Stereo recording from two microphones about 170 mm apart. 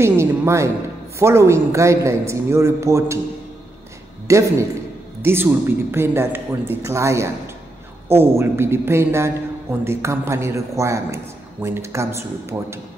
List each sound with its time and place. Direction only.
0.0 s a woman's voice: 15° right (ahead or behind)
4.3 s a woman's voice: 15° right (ahead or behind)